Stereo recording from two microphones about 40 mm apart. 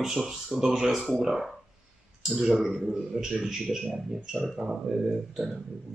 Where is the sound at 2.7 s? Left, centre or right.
Centre.